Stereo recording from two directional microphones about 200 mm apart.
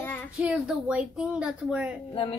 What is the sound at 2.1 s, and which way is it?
Speech, 25° left (ahead or behind).